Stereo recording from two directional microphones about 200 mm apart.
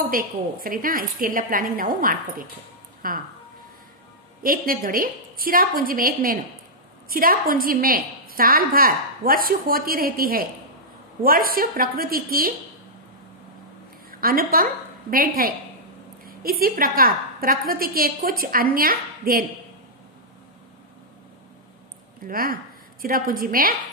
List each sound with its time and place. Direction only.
0.1 s a woman's voice: 45° right (ahead or behind)
4.4 s a woman's voice: 45° right (ahead or behind)
14.2 s a woman's voice: 45° right (ahead or behind)
22.2 s a woman's voice: 45° right (ahead or behind)